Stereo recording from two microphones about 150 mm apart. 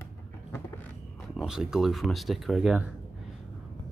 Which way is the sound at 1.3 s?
5° right (ahead or behind).